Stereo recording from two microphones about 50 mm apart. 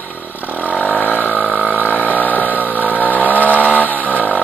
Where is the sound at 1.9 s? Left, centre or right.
Left.